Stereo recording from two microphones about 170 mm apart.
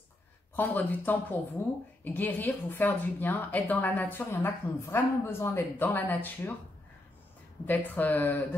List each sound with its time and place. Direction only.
0.6 s a woman's voice: 10° left (ahead or behind)
7.6 s a woman's voice: 10° left (ahead or behind)